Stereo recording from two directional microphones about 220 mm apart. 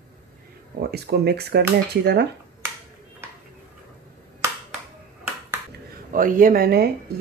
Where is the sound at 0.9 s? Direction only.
50° right (ahead or behind).